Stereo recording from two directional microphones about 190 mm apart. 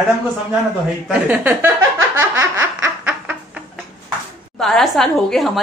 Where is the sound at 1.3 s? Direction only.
10° right (ahead or behind).